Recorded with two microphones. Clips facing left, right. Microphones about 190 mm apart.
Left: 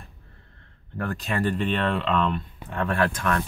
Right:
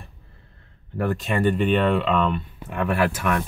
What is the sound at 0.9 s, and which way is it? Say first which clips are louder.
Speech: right 4 dB; centre (ahead or behind).